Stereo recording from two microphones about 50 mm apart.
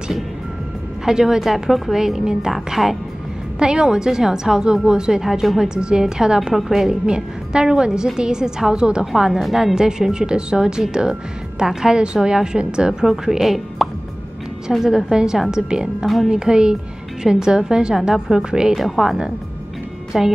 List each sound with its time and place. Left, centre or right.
1.0 s a woman's voice: centre
3.5 s a woman's voice: centre
5.8 s a woman's voice: centre
6.5 s a woman's voice: centre
6.9 s a woman's voice: centre